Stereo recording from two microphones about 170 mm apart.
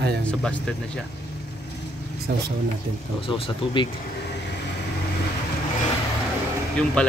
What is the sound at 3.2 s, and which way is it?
Speech, 30° left (ahead or behind).